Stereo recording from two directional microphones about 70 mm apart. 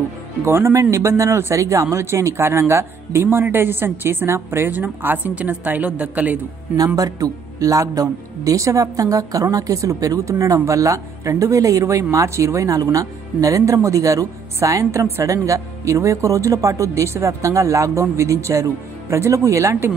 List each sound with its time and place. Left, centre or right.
0.5 s speech: right; by 6.4 s centre
7.0 s a woman's voice: right